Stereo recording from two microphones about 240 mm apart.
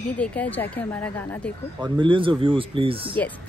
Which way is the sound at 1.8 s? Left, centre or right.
Centre.